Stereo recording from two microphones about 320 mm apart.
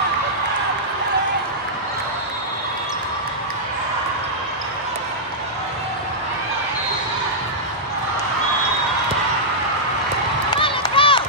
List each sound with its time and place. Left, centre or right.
10.5 s run: centre